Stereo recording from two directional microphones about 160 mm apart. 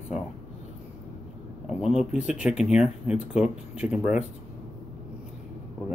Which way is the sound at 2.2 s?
5° right (ahead or behind).